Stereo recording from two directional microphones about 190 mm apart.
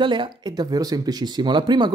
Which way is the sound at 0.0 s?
25° right (ahead or behind).